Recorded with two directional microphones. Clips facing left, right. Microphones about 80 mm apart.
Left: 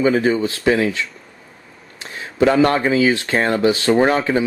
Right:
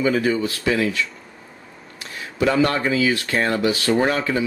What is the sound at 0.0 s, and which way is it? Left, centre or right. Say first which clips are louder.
Speech: left 3 dB; left.